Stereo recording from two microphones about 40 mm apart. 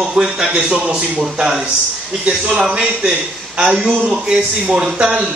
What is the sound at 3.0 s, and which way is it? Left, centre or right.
A man's voice, centre.